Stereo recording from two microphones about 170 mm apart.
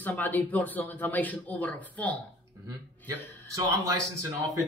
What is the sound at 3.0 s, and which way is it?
Speech, 20° right (ahead or behind).